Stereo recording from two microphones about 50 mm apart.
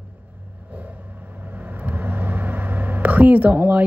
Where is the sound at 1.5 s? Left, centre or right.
Right.